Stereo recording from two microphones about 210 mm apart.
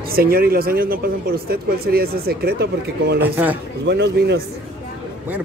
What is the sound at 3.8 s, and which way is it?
Speech, 55° right (ahead or behind).